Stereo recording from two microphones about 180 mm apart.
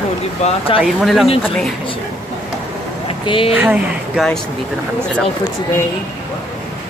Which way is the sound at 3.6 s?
10° right (ahead or behind).